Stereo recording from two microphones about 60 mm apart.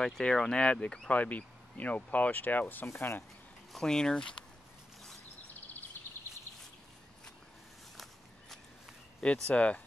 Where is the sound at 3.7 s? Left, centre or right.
Centre.